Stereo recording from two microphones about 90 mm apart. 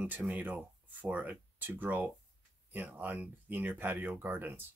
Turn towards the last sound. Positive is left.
turn(degrees=-25)  # may be behind; listen again after turning